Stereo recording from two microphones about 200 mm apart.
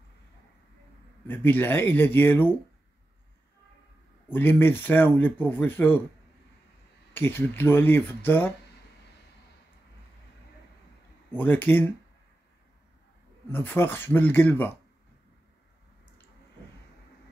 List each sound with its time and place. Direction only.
1.2 s speech: 10° left (ahead or behind)
4.3 s speech: 10° left (ahead or behind)
7.2 s speech: 10° left (ahead or behind)
11.3 s speech: 10° left (ahead or behind)
13.5 s speech: 10° left (ahead or behind)